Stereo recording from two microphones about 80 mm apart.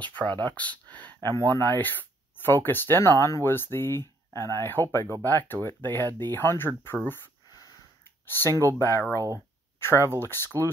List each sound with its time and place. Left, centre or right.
0.0 s speech: centre
1.3 s speech: left
7.4 s snort: left
8.3 s speech: left
9.1 s speech: right
9.8 s speech: left